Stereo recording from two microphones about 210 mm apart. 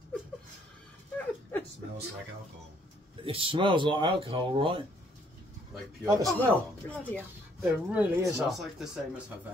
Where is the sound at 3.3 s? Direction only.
25° right (ahead or behind).